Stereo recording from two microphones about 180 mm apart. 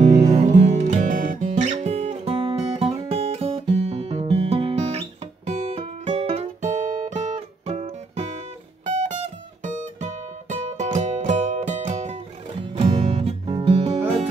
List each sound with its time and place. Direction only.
0.2 s music: 40° right (ahead or behind)